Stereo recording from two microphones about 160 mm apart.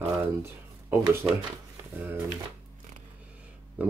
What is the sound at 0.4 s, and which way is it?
Speech, 15° right (ahead or behind).